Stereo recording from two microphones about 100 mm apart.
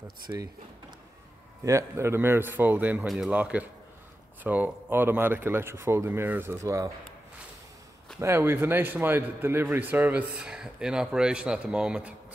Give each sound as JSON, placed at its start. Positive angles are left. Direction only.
{"t": 0.3, "sound": "speech", "side_deg": -35}
{"t": 1.6, "sound": "speech", "side_deg": -30}
{"t": 6.6, "sound": "speech", "side_deg": -35}
{"t": 8.2, "sound": "speech", "side_deg": -25}